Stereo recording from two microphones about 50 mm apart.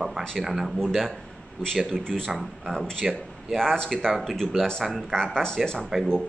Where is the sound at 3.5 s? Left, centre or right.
Centre.